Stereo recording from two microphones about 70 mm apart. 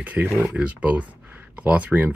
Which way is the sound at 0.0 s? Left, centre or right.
Right.